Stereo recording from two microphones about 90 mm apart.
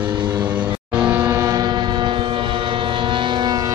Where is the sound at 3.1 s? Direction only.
60° right (ahead or behind).